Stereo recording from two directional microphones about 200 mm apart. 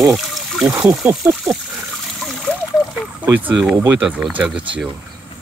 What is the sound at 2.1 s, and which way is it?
Water, centre (ahead or behind).